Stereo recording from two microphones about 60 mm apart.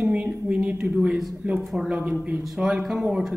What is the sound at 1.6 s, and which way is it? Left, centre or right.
Speech, centre.